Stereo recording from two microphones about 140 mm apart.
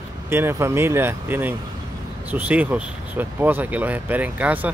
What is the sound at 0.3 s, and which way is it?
Speech, 15° right (ahead or behind).